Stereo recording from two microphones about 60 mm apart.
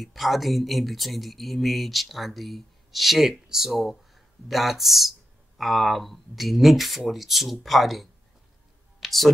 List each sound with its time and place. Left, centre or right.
0.0 s speech: centre